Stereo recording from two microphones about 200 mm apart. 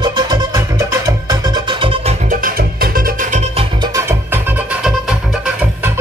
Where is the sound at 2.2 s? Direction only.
45° right (ahead or behind).